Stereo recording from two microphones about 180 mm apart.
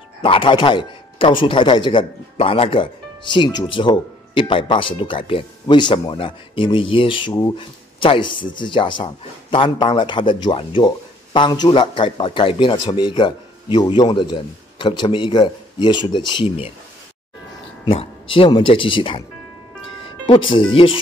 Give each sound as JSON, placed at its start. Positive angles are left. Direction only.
{"t": 0.2, "sound": "a man's voice", "side_deg": 30}
{"t": 17.8, "sound": "a man's voice", "side_deg": 30}
{"t": 20.2, "sound": "a man's voice", "side_deg": 30}